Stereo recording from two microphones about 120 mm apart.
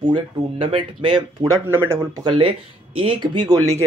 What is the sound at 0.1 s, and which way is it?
Speech, 45° right (ahead or behind).